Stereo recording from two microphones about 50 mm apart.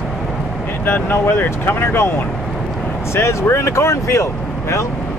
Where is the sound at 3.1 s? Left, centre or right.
Left.